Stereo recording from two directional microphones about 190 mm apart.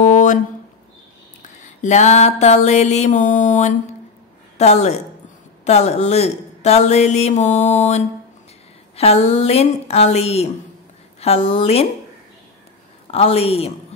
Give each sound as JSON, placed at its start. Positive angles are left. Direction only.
{"t": 0.0, "sound": "a sound", "side_deg": 40}
{"t": 1.8, "sound": "speech", "side_deg": 35}
{"t": 13.1, "sound": "speech", "side_deg": 30}